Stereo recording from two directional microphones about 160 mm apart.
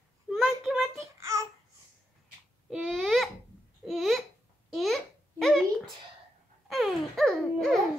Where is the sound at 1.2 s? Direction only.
20° right (ahead or behind).